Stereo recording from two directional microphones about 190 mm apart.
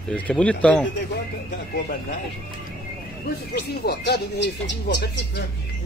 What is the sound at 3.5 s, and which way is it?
Speech, 60° left (ahead or behind).